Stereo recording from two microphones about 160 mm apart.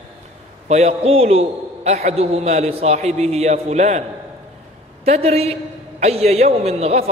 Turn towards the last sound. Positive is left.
turn(degrees=-40)  # may be behind; listen again after turning